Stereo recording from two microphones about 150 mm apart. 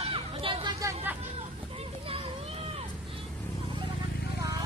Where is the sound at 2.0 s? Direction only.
40° right (ahead or behind).